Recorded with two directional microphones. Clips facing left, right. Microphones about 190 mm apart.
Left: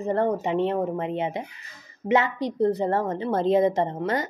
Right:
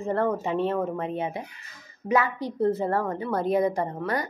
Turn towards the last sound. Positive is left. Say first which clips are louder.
# left 3 dB
turn(degrees=25)  # may be behind; listen again after turning